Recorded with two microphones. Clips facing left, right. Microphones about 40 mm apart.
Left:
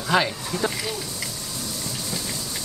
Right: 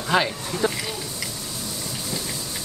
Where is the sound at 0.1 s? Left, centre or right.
Centre.